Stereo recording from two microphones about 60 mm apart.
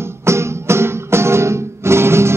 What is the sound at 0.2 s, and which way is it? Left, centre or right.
Music, right.